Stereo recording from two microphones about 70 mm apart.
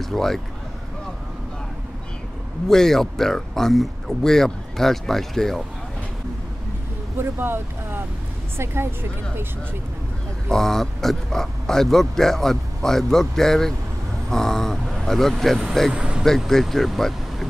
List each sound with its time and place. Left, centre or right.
0.0 s speech: centre
2.7 s speech: centre
7.2 s speech: right
10.5 s speech: centre
15.9 s speech: centre
16.3 s speech: centre